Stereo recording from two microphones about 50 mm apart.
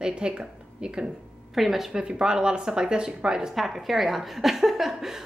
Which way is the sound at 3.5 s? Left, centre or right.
Centre.